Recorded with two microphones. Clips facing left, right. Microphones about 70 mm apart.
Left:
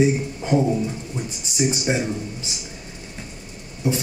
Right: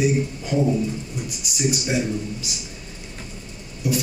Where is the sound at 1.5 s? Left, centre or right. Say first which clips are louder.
Left 1 dB; left.